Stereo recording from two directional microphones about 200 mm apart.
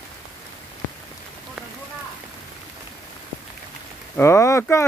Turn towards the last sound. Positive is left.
turn(degrees=15)  # may be behind; listen again after turning